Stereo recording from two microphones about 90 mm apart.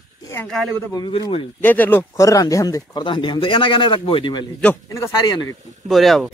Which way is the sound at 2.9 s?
60° left (ahead or behind).